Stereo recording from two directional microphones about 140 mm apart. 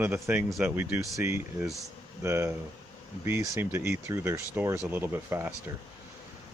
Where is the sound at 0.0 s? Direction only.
15° right (ahead or behind).